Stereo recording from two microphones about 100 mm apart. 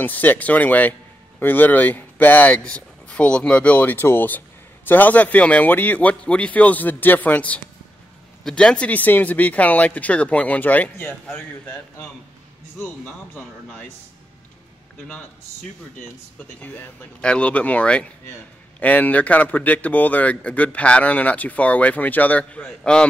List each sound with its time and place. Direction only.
0.0 s speech: 20° left (ahead or behind)
16.3 s speech: 15° left (ahead or behind)